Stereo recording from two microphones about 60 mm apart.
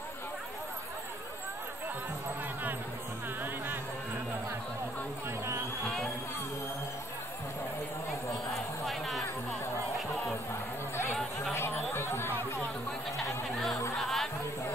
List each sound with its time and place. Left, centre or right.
8.5 s a sound: centre
11.5 s chatter: left
13.9 s music: centre